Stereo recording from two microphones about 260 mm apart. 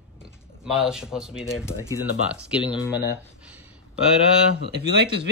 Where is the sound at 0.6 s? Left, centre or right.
Centre.